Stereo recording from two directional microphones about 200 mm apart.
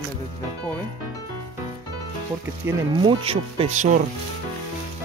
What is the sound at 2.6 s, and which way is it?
Speech, 20° right (ahead or behind).